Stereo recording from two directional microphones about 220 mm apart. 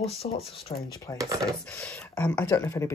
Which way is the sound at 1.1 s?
15° right (ahead or behind).